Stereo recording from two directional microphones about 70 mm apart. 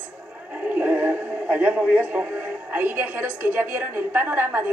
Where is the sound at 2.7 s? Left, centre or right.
Right.